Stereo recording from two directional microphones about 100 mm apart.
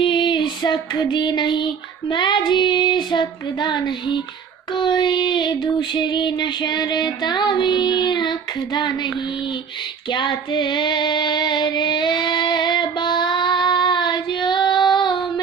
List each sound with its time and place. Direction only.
0.0 s child singing: 50° left (ahead or behind)
10.1 s female singing: 50° left (ahead or behind)